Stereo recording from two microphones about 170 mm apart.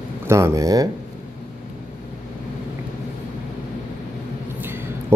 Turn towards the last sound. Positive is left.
turn(degrees=-15)  # may be behind; listen again after turning